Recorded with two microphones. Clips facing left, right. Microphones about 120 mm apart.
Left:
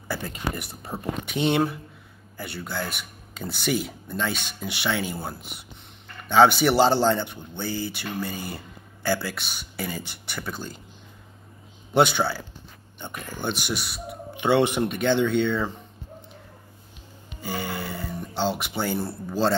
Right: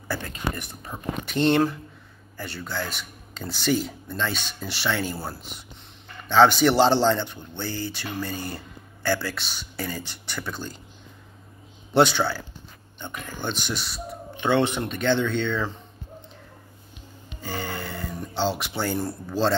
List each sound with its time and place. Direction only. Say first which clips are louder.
0.9 s speech: left 4 dB; 25° left (ahead or behind)
1.2 s speech: right 3 dB; 5° left (ahead or behind)
5.1 s speech: even; centre (ahead or behind)
11.9 s speech: right 1 dB; centre (ahead or behind)
17.4 s speech: left 1 dB; 10° left (ahead or behind)